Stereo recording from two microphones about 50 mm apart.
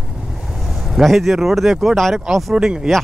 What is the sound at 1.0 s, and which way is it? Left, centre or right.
Speech, centre.